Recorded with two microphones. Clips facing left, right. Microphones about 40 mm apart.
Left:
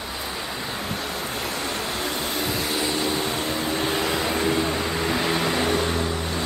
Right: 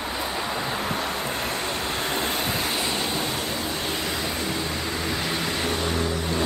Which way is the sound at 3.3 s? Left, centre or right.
Left.